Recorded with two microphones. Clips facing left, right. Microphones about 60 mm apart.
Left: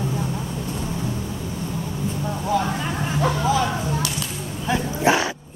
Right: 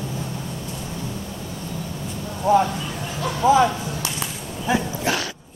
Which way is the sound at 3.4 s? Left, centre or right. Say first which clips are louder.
Right 5 dB; right.